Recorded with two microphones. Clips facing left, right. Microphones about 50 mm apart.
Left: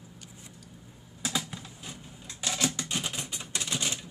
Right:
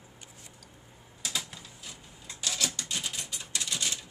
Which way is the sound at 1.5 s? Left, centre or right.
Centre.